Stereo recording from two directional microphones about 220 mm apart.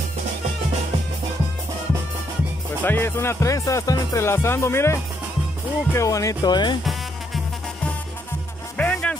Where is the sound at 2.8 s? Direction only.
10° left (ahead or behind).